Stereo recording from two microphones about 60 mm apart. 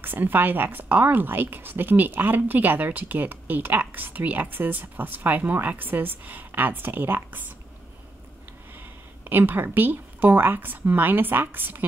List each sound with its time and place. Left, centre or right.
0.0 s speech: right
8.7 s a woman's voice: right